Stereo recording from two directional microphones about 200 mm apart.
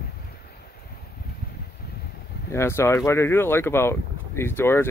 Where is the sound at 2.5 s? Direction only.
15° left (ahead or behind).